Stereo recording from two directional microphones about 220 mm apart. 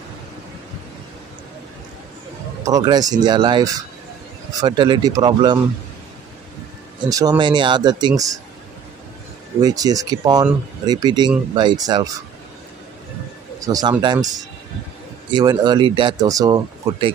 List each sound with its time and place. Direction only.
2.6 s speech: 15° right (ahead or behind)
7.1 s speech: 15° right (ahead or behind)
9.6 s speech: 15° right (ahead or behind)
13.6 s speech: 15° right (ahead or behind)